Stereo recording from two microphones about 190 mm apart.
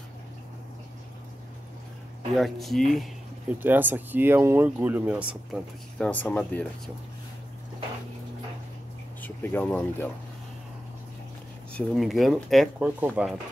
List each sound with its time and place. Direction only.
2.3 s speech: centre (ahead or behind)
3.5 s speech: 10° right (ahead or behind); by 6.6 s 10° left (ahead or behind)
9.2 s speech: 10° left (ahead or behind)
11.7 s speech: centre (ahead or behind)